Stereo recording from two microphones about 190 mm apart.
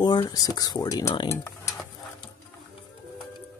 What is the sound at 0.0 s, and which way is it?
Speech, 20° left (ahead or behind).